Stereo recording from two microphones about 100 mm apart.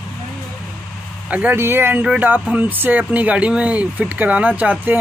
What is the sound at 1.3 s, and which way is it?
Speech, 15° right (ahead or behind).